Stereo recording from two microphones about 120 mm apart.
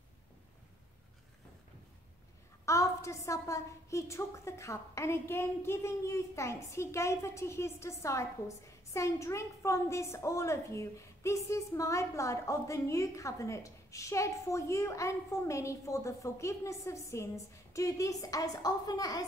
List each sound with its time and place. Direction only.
2.6 s a woman's voice: 25° left (ahead or behind)